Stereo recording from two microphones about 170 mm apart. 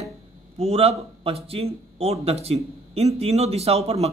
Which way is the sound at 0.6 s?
35° right (ahead or behind).